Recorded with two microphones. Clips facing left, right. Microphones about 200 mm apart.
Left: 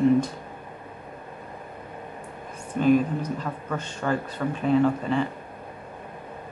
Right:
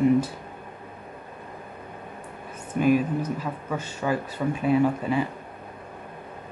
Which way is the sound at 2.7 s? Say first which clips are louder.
Left 1 dB; 10° right (ahead or behind).